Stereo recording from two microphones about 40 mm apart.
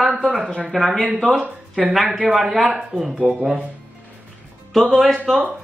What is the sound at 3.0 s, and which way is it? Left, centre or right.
Speech, right.